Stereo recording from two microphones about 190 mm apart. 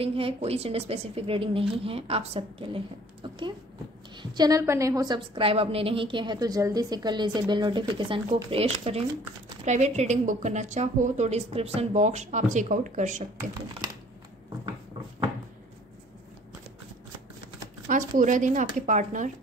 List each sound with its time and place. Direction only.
0.0 s a woman's voice: 30° right (ahead or behind)
17.8 s a woman's voice: 45° right (ahead or behind)